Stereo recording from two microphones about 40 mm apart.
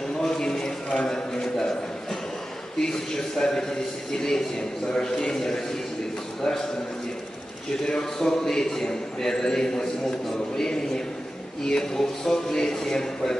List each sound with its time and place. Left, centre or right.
0.2 s a sound: centre
2.8 s a man's voice: centre
7.8 s a man's voice: centre